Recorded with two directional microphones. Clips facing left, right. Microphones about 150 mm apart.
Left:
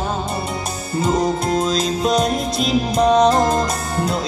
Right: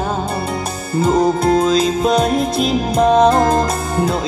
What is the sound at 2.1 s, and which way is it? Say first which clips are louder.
Music: right 3 dB; 55° right (ahead or behind).